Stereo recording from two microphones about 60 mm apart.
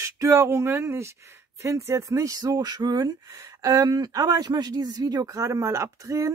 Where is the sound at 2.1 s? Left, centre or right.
Right.